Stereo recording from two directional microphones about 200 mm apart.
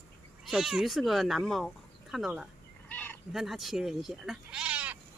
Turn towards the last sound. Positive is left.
turn(degrees=-5)  # may be behind; listen again after turning